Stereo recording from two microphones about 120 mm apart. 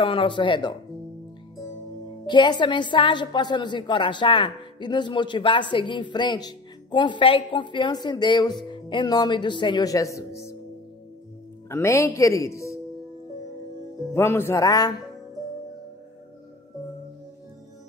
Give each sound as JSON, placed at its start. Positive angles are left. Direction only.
{"t": 0.0, "sound": "speech", "side_deg": 45}
{"t": 2.2, "sound": "a woman's voice", "side_deg": 40}
{"t": 11.7, "sound": "a woman's voice", "side_deg": 25}
{"t": 14.1, "sound": "a woman's voice", "side_deg": 20}